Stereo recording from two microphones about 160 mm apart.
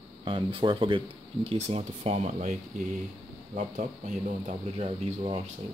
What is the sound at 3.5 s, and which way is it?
Speech, 50° right (ahead or behind).